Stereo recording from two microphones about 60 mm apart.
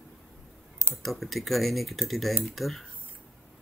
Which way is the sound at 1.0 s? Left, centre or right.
Centre.